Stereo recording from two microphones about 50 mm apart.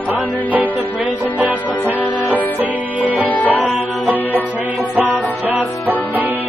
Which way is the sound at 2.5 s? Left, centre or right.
Right.